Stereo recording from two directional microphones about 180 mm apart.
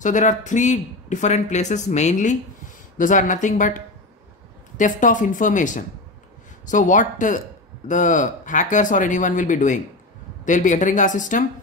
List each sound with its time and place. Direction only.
0.0 s speech: 45° left (ahead or behind)